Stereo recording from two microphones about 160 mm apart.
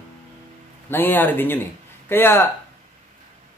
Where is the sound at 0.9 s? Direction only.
10° left (ahead or behind).